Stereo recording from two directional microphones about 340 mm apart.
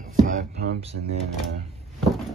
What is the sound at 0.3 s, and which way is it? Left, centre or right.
Speech, centre.